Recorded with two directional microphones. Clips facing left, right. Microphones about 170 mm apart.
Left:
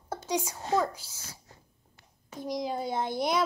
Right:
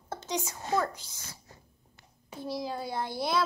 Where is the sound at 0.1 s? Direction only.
10° left (ahead or behind).